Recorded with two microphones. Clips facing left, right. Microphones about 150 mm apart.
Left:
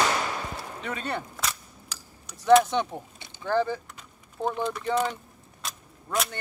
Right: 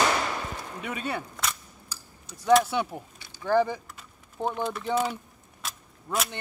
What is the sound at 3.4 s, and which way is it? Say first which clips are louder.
Speech: right 2 dB; 15° right (ahead or behind).